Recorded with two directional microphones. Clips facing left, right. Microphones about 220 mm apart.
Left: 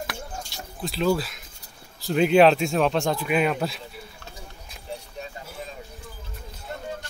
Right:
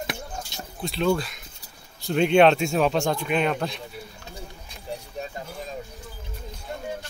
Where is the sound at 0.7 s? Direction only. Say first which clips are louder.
Even; centre (ahead or behind).